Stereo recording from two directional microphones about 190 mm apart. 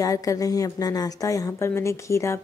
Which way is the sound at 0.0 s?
20° left (ahead or behind).